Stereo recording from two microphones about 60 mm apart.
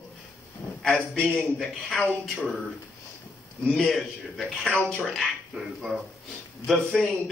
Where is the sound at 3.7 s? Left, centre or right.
Centre.